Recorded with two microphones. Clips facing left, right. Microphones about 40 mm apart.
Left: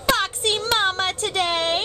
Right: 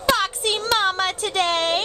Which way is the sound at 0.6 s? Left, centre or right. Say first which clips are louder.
Right 2 dB; centre.